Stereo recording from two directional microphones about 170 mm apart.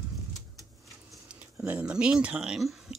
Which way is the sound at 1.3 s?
10° right (ahead or behind).